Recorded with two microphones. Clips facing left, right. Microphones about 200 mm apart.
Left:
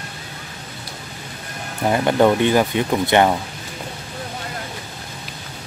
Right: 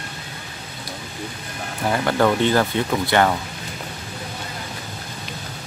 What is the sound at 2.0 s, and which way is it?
Speech, 15° left (ahead or behind).